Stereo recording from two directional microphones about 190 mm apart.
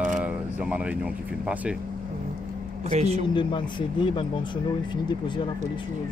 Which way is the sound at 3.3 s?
25° left (ahead or behind).